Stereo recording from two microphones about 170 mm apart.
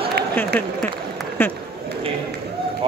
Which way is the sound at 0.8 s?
10° left (ahead or behind).